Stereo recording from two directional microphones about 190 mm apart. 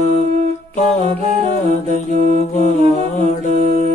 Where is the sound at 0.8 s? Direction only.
40° left (ahead or behind).